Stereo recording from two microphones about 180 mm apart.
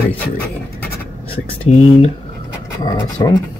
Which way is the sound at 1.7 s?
35° left (ahead or behind).